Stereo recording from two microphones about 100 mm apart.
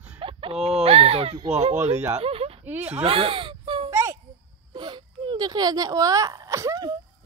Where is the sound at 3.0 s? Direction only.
65° right (ahead or behind).